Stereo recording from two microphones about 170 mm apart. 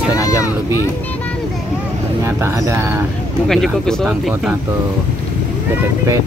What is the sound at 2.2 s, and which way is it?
Speech, 15° right (ahead or behind).